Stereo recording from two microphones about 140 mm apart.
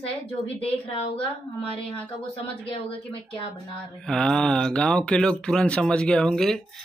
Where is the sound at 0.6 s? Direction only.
45° left (ahead or behind).